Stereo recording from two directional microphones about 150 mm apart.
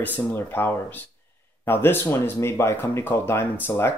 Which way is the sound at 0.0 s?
10° left (ahead or behind).